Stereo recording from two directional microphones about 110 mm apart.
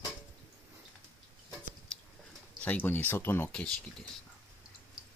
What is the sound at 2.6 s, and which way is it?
Speech, 15° left (ahead or behind).